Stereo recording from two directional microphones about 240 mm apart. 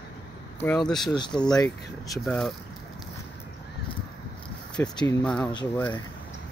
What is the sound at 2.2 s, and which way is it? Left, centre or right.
Speech, centre.